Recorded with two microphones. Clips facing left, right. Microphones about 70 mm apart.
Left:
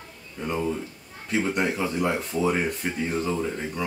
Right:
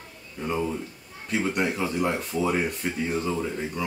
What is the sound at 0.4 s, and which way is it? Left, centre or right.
Speech, centre.